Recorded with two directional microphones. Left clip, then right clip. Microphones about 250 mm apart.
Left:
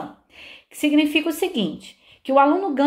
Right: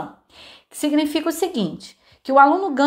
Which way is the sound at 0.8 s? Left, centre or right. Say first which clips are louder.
Left 2 dB; right.